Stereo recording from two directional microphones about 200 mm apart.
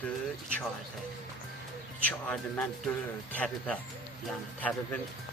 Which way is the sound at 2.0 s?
5° left (ahead or behind).